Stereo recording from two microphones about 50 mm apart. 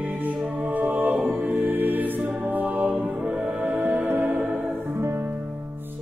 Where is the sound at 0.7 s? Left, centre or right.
Right.